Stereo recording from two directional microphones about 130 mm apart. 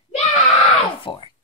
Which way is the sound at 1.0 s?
40° left (ahead or behind).